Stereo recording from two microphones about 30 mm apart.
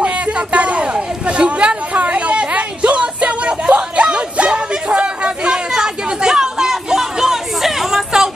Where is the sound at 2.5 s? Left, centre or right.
Right.